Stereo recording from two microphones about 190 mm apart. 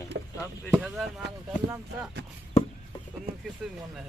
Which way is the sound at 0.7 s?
Centre (ahead or behind).